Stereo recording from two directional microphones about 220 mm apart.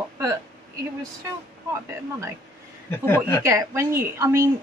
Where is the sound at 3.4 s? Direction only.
15° right (ahead or behind).